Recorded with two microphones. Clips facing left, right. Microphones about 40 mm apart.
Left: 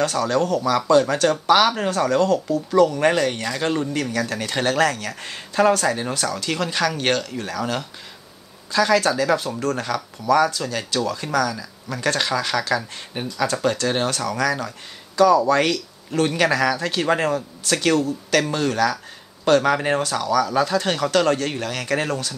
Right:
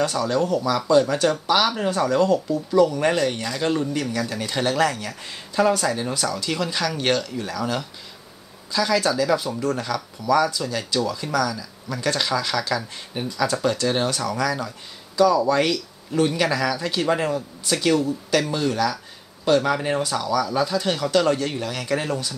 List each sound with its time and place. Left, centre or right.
0.0 s speech: left
3.1 s speech: left
3.9 s speech: left
17.3 s speech: left